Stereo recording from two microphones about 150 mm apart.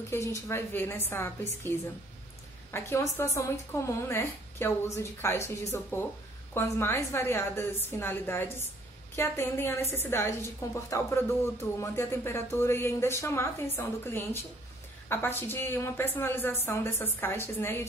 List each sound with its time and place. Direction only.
0.1 s a woman's voice: 20° left (ahead or behind)